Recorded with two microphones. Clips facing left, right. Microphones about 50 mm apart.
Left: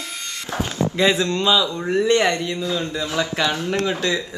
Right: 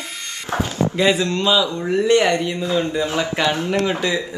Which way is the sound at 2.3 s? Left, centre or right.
Right.